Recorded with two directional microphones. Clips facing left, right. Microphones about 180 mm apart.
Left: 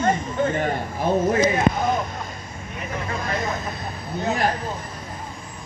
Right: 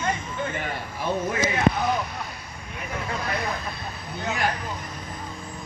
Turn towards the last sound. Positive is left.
turn(degrees=35)  # may be behind; listen again after turning